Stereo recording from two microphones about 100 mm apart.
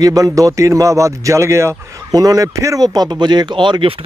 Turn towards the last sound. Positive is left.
turn(degrees=-55)  # may be behind; listen again after turning